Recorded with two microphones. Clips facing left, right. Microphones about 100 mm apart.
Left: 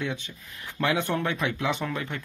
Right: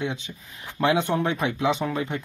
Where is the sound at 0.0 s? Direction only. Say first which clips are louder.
Right 2 dB; 15° right (ahead or behind).